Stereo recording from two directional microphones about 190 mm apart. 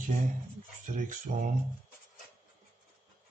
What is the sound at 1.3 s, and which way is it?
Speech, 35° right (ahead or behind).